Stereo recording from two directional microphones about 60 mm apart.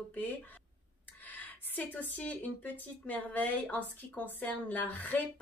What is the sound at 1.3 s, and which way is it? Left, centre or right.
Speech, left.